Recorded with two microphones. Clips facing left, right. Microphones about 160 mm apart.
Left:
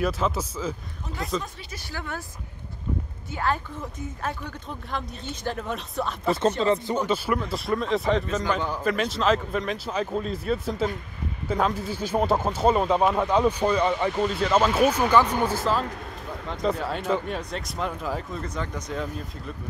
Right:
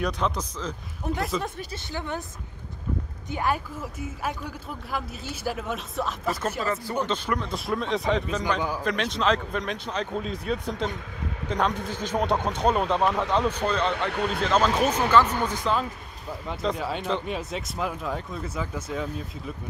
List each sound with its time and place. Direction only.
0.0 s speech: 5° left (ahead or behind)
1.9 s speech: 20° right (ahead or behind)
3.3 s speech: 15° right (ahead or behind); by 6.1 s centre (ahead or behind)
6.2 s speech: 25° left (ahead or behind)
7.1 s speech: 5° left (ahead or behind)
8.8 s speech: 5° left (ahead or behind)
13.9 s speech: 65° right (ahead or behind)
14.4 s speech: 5° left (ahead or behind)